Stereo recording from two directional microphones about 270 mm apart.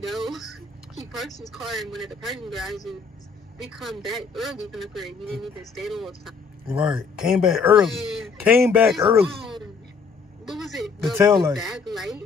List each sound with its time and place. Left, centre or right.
0.0 s speech: centre
9.0 s speech: centre
10.4 s speech: centre